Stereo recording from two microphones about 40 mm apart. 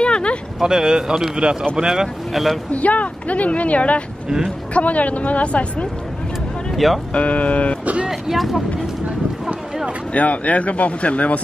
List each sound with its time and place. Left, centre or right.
0.0 s a sound: left
0.6 s a man's voice: centre
2.3 s speech: centre
2.7 s speech: left
6.7 s music: centre
7.2 s speech: left
7.8 s speech: right
8.1 s speech: centre
10.1 s speech: left